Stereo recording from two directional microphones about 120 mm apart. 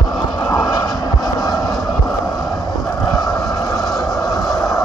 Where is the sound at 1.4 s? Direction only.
5° right (ahead or behind).